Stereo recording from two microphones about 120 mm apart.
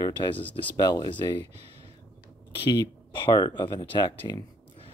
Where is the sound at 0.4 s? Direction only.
15° left (ahead or behind).